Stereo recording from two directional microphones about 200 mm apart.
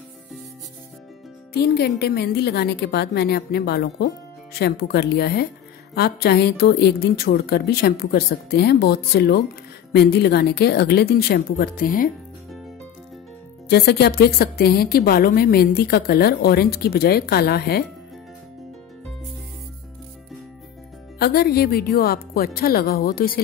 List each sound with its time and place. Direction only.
1.5 s a woman's voice: 55° left (ahead or behind)
13.7 s a woman's voice: 55° left (ahead or behind)
21.2 s a woman's voice: 50° left (ahead or behind)